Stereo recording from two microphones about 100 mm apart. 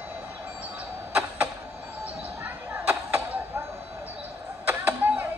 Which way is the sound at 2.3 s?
25° right (ahead or behind).